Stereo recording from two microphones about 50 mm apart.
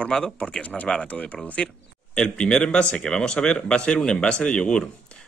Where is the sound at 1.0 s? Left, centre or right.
Left.